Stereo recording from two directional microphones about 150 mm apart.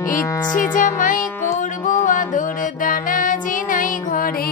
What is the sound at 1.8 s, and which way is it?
Music, 60° left (ahead or behind).